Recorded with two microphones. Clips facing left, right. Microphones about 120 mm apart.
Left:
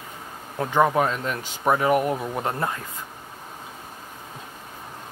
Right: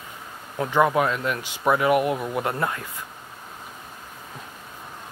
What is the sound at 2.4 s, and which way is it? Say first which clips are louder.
Speech: right 1 dB; 30° left (ahead or behind).